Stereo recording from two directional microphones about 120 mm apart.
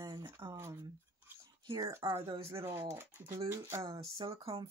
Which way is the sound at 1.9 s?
25° right (ahead or behind).